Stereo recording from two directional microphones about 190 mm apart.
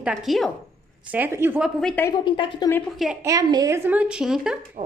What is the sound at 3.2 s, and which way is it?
Speech, 20° right (ahead or behind).